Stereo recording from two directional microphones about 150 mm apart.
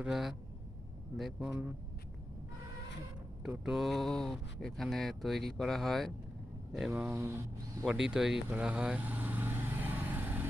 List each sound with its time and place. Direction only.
0.0 s speech: centre (ahead or behind)
3.4 s speech: 5° right (ahead or behind)
6.9 s speech: 15° right (ahead or behind)
7.8 s speech: 5° right (ahead or behind)
8.5 s vehicle: 10° right (ahead or behind)